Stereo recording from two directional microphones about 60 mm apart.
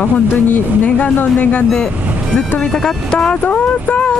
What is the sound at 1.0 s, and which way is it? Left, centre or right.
Speech, left.